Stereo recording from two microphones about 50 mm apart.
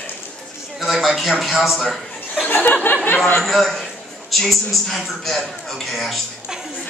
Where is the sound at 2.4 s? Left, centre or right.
Left.